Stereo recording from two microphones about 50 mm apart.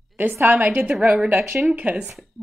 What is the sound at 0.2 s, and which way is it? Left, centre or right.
Speech, right.